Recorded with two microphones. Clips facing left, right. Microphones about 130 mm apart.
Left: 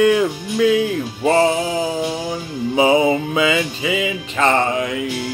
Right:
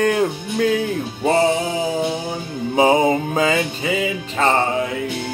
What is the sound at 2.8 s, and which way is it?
Music, 45° right (ahead or behind).